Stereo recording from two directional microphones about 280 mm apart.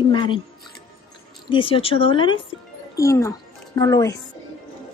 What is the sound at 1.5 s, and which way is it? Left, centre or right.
A woman's voice, centre.